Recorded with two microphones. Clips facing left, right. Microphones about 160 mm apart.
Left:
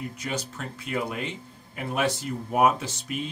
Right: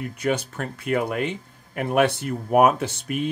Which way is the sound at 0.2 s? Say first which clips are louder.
Right 11 dB; 60° right (ahead or behind).